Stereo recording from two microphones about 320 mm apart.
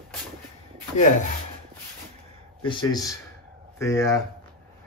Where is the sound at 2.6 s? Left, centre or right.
Centre.